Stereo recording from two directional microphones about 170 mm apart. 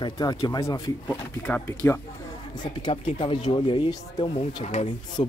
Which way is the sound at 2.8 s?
30° left (ahead or behind).